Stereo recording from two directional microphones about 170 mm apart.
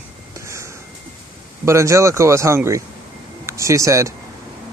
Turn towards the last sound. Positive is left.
turn(degrees=-20)  # may be behind; listen again after turning